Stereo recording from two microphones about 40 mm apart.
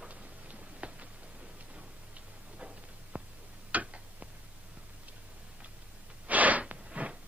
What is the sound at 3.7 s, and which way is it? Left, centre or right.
Tick-tock, right.